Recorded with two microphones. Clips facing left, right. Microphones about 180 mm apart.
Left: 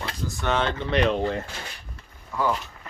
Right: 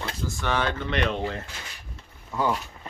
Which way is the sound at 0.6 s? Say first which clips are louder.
Left 4 dB; 35° left (ahead or behind).